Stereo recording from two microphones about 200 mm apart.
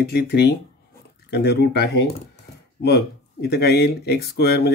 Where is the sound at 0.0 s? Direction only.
55° left (ahead or behind).